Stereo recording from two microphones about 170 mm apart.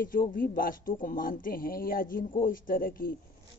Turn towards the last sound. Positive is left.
turn(degrees=55)  # may be behind; listen again after turning